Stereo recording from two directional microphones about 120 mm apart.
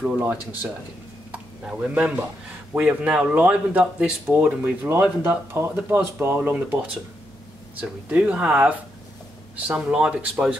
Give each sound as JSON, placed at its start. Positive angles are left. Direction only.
{"t": 0.2, "sound": "speech", "side_deg": -15}
{"t": 7.8, "sound": "speech", "side_deg": -10}